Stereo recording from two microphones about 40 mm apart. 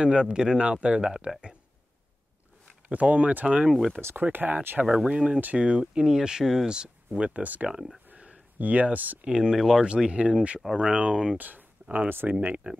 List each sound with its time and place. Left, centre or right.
0.0 s speech: right
2.9 s speech: right
4.2 s speech: right
4.9 s speech: right
7.2 s speech: right
8.5 s speech: right
9.2 s speech: centre
9.8 s speech: right
11.3 s speech: right